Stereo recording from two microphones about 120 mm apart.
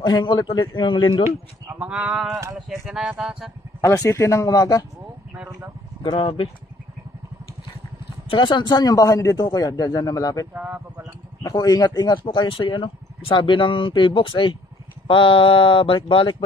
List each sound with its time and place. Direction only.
0.0 s a man's voice: 40° left (ahead or behind)
1.8 s speech: 10° right (ahead or behind)
3.8 s speech: 25° left (ahead or behind)
6.0 s speech: 45° left (ahead or behind)
8.3 s a man's voice: 40° left (ahead or behind)
10.5 s speech: 15° right (ahead or behind)
11.4 s speech: 30° left (ahead or behind)